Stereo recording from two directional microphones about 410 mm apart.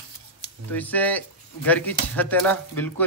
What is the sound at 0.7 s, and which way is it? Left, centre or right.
Speech, centre.